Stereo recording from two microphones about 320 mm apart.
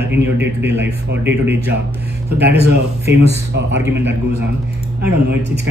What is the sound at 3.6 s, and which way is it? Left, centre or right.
Speech, right.